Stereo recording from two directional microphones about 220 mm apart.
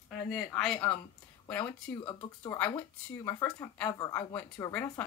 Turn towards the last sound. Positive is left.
turn(degrees=10)  # may be behind; listen again after turning